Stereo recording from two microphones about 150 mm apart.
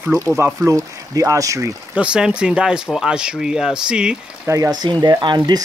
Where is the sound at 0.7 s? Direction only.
20° right (ahead or behind).